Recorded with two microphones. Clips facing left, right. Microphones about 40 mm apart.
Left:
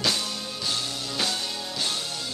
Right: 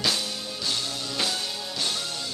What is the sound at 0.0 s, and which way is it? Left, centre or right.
Music, centre.